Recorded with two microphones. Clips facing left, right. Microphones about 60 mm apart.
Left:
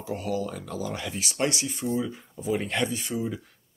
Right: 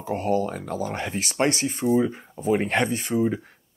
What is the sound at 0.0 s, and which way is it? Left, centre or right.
Speech, right.